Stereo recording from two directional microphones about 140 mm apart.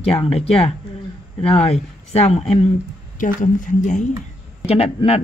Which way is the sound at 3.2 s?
70° left (ahead or behind).